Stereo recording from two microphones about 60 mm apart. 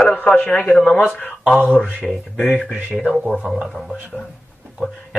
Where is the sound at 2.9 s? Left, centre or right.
Centre.